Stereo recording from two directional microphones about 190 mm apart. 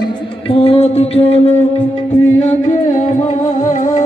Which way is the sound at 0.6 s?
30° left (ahead or behind).